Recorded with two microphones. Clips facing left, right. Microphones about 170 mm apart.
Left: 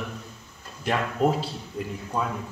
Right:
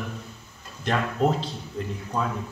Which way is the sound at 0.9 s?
10° left (ahead or behind).